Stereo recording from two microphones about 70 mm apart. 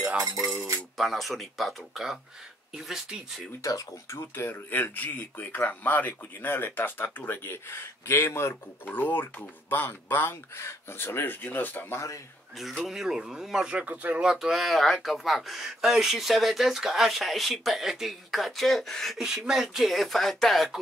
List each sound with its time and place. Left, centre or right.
0.9 s speech: centre
3.6 s speech: left
4.2 s speech: left
12.8 s speech: centre
13.7 s speech: right
14.2 s speech: centre
19.1 s speech: centre